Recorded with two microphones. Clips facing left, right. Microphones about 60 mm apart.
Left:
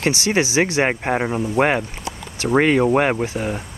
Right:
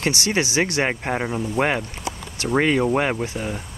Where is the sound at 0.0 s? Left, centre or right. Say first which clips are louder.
Left 3 dB; centre.